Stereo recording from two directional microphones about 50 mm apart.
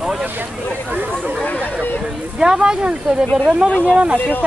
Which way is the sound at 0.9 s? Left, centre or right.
Right.